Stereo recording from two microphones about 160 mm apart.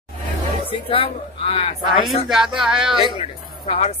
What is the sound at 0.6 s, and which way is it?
Speech, 35° left (ahead or behind).